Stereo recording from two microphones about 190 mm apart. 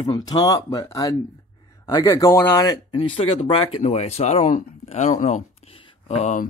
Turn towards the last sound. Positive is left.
turn(degrees=40)  # may be behind; listen again after turning